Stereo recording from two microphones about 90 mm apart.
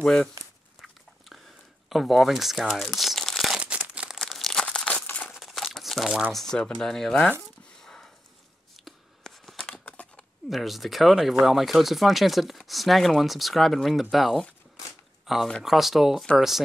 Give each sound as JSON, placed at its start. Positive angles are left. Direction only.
{"t": 0.0, "sound": "speech", "side_deg": 5}
{"t": 0.7, "sound": "dog", "side_deg": 0}
{"t": 1.9, "sound": "speech", "side_deg": 0}
{"t": 3.5, "sound": "crumpling", "side_deg": -10}
{"t": 4.2, "sound": "crumpling", "side_deg": 5}
{"t": 5.3, "sound": "a sound", "side_deg": 0}
{"t": 5.8, "sound": "crumpling", "side_deg": 0}
{"t": 6.3, "sound": "speech", "side_deg": 5}
{"t": 7.8, "sound": "sniff", "side_deg": 5}
{"t": 8.7, "sound": "scissors", "side_deg": 0}
{"t": 10.5, "sound": "speech", "side_deg": 0}